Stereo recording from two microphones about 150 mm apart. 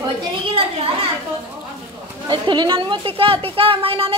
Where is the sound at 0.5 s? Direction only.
40° right (ahead or behind).